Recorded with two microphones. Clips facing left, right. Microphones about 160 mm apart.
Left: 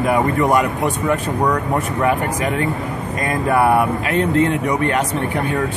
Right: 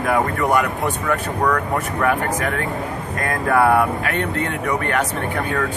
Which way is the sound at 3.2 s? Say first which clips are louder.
Left 1 dB; 15° left (ahead or behind).